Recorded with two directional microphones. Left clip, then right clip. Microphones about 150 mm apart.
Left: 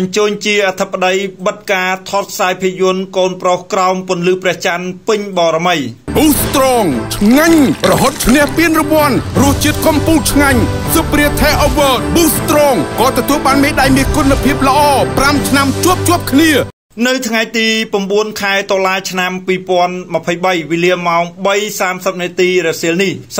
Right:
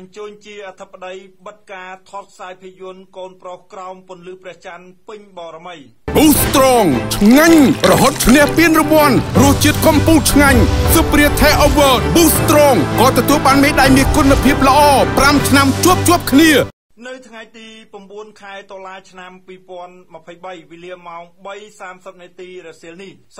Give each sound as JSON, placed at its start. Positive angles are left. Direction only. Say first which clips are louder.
{"t": 0.1, "sound": "speech", "louder": "left 18 dB", "side_deg": 20}
{"t": 6.1, "sound": "speech", "louder": "even", "side_deg": 0}
{"t": 17.0, "sound": "speech", "louder": "left 18 dB", "side_deg": 25}